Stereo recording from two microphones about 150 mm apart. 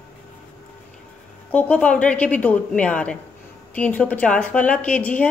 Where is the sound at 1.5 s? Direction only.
10° left (ahead or behind).